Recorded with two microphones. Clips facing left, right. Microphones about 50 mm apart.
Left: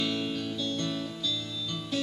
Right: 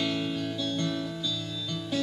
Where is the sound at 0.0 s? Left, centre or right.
Centre.